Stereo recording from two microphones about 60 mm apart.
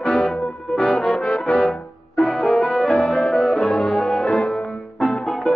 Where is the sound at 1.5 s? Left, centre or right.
Left.